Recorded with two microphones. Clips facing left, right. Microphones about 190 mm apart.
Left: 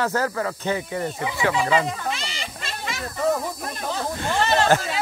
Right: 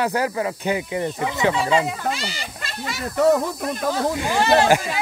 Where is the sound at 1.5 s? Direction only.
Centre (ahead or behind).